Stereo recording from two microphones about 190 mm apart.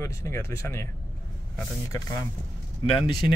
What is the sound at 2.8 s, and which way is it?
Speech, 25° left (ahead or behind).